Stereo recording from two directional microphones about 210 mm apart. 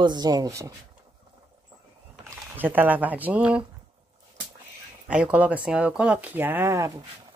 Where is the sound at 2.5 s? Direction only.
10° right (ahead or behind).